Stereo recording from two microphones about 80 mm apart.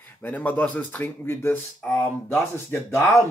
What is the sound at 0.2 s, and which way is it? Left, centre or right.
Speech, centre.